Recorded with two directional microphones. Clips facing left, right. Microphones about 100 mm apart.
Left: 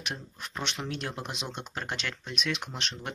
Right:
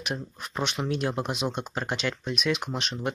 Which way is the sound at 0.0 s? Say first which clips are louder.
Right 5 dB; 15° right (ahead or behind).